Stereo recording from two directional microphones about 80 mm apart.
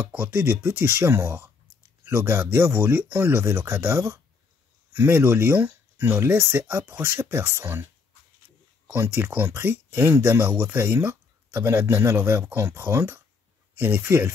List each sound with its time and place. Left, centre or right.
0.3 s speech: right
8.8 s speech: right